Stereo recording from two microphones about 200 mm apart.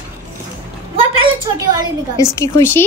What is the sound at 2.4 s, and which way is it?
Speech, 15° left (ahead or behind).